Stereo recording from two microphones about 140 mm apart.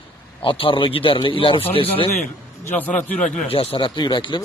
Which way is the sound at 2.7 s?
15° left (ahead or behind).